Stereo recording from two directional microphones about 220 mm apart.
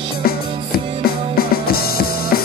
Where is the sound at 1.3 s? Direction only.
45° left (ahead or behind).